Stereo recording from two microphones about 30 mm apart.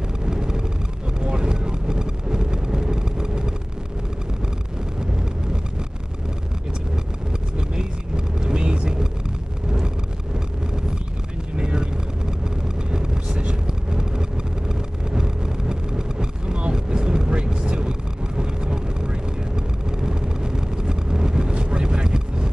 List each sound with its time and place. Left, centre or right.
0.2 s vehicle: right
8.5 s vehicle: right
11.5 s vehicle: right
12.9 s vehicle: right
14.7 s vehicle: right